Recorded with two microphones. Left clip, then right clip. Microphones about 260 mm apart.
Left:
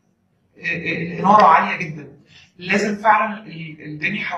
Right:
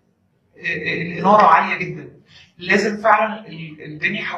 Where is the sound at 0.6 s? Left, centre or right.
Centre.